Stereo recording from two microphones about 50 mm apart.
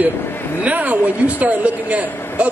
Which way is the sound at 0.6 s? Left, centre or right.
Right.